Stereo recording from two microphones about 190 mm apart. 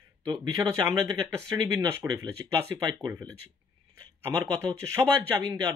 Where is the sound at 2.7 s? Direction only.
20° right (ahead or behind).